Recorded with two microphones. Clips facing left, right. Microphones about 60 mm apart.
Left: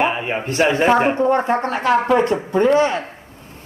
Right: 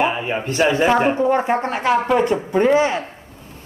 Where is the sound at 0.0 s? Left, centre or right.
Left.